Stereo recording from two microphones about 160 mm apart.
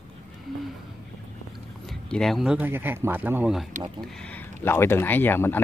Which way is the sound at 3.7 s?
50° right (ahead or behind).